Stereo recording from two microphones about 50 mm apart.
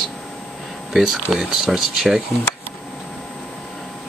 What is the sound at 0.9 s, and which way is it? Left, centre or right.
Speech, centre.